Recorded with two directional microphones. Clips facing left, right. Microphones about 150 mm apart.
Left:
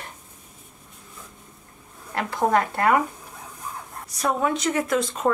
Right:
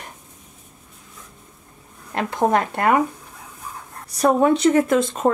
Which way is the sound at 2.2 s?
20° right (ahead or behind).